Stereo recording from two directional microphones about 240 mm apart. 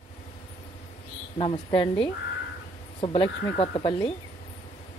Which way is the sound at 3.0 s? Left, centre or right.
Left.